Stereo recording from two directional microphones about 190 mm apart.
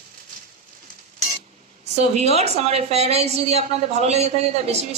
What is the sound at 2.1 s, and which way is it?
A woman's voice, 35° right (ahead or behind).